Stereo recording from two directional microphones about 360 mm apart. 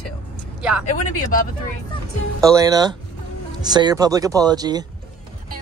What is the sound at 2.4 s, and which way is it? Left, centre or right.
Speech, centre.